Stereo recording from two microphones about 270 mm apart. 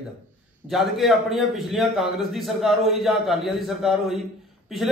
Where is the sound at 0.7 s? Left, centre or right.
Centre.